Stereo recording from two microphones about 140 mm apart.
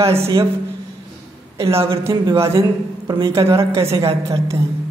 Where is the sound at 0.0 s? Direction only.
20° right (ahead or behind).